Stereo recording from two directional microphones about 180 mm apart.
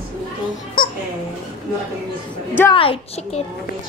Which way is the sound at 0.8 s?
55° left (ahead or behind).